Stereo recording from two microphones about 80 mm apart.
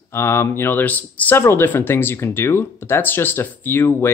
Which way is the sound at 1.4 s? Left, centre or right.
Left.